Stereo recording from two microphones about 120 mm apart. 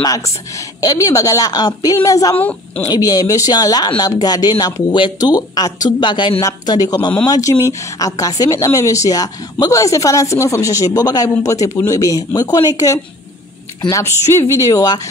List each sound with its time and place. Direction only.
0.6 s a woman's voice: 30° left (ahead or behind)
2.3 s a woman's voice: 15° left (ahead or behind)
2.9 s a woman's voice: 30° left (ahead or behind)